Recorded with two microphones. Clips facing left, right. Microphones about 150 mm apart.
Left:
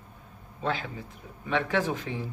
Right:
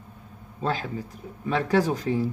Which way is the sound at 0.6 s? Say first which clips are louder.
Right 3 dB; 35° right (ahead or behind).